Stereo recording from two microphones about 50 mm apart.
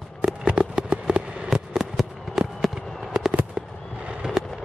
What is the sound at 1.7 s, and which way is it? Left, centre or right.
Fireworks, centre.